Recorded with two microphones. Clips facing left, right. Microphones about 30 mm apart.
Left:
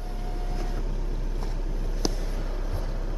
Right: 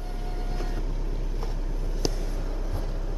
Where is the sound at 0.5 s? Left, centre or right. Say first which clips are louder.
Right 1 dB; centre.